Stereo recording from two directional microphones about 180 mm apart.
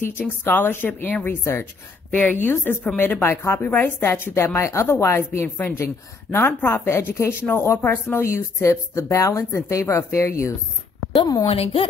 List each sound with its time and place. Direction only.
0.4 s a woman's voice: 10° left (ahead or behind)
11.4 s a woman's voice: 35° left (ahead or behind)